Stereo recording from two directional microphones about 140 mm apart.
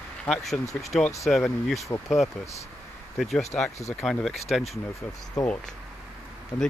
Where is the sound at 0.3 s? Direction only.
Centre (ahead or behind).